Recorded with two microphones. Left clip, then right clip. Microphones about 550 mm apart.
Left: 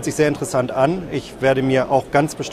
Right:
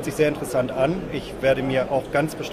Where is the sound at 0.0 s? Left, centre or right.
Left.